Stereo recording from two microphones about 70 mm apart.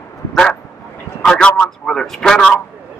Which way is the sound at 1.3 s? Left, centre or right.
Centre.